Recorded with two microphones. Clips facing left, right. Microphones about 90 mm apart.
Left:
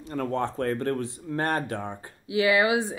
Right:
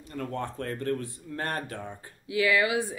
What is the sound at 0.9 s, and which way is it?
Speech, 25° left (ahead or behind).